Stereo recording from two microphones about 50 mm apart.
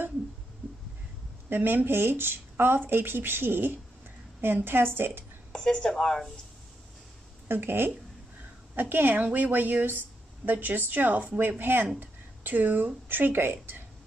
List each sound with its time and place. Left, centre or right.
1.5 s speech: right
5.5 s speech: centre
7.4 s speech: right